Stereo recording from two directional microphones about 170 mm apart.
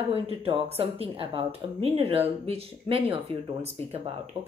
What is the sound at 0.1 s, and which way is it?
A woman's voice, 35° right (ahead or behind).